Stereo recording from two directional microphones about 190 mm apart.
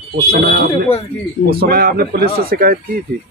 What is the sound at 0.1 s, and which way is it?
Speech, 55° right (ahead or behind).